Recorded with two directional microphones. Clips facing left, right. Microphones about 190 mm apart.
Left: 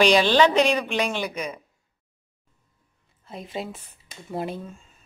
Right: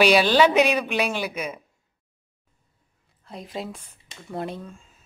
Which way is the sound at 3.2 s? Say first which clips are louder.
Left 1 dB; centre (ahead or behind).